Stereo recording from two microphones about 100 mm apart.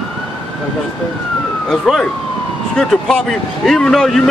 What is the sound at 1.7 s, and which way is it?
Speech, 5° left (ahead or behind).